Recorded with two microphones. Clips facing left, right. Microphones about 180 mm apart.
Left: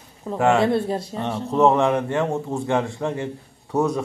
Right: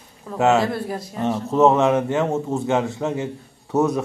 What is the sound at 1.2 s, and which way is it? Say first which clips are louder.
A man's voice: right 2 dB; centre (ahead or behind).